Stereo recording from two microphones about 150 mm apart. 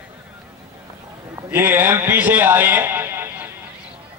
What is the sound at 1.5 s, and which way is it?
A man's voice, 15° right (ahead or behind).